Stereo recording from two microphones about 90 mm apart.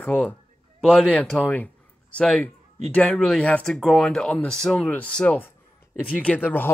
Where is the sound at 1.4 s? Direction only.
20° left (ahead or behind).